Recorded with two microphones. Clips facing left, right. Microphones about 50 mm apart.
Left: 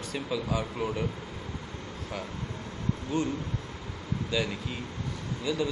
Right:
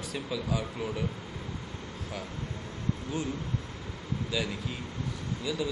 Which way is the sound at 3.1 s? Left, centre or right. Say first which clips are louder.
Left 3 dB; centre.